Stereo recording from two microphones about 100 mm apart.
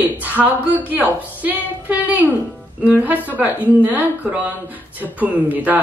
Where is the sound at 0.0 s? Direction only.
15° right (ahead or behind).